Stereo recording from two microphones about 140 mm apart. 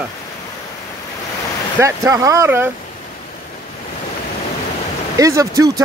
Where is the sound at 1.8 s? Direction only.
20° right (ahead or behind).